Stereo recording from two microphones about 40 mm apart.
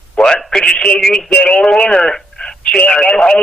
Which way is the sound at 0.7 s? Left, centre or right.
Left.